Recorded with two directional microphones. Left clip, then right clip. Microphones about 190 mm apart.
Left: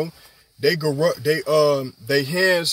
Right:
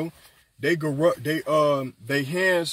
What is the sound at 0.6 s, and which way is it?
Speech, 15° left (ahead or behind).